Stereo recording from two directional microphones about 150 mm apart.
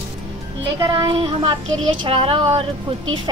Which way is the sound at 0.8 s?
30° right (ahead or behind).